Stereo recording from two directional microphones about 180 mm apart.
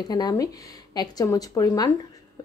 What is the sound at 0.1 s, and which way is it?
A woman's voice, 20° left (ahead or behind).